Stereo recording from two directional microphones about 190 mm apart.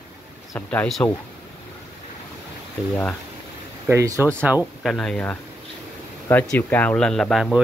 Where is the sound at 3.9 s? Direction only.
15° right (ahead or behind).